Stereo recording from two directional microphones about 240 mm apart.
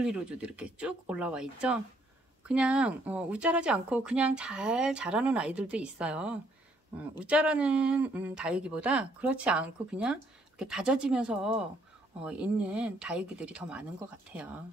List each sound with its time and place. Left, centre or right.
0.0 s speech: centre